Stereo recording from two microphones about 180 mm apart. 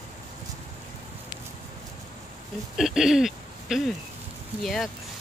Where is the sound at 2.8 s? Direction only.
Centre (ahead or behind).